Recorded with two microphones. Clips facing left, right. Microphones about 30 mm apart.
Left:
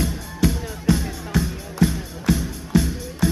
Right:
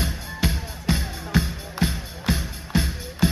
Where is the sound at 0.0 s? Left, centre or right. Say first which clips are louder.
Left 4 dB; right.